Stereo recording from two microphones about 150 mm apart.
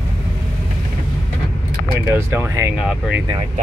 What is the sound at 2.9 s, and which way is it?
Speech, 5° right (ahead or behind).